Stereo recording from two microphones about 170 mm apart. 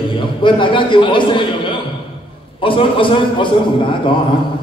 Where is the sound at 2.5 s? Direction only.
30° left (ahead or behind).